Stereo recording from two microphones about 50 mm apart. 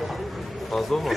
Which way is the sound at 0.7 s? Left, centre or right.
Centre.